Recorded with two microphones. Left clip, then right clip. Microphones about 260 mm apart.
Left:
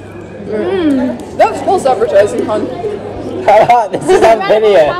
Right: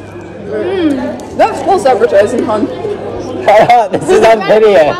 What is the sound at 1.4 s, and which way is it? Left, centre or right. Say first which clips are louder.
Speech: right 1 dB; right.